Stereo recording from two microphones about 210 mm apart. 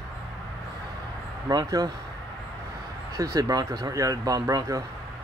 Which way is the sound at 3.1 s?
15° right (ahead or behind).